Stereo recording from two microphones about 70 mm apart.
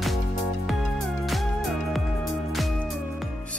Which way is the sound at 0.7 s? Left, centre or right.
Centre.